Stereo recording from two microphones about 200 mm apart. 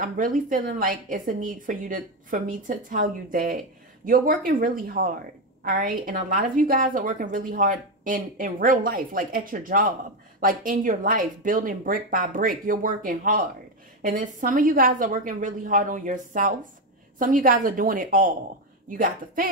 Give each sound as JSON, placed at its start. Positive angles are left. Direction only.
{"t": 0.0, "sound": "a woman's voice", "side_deg": -40}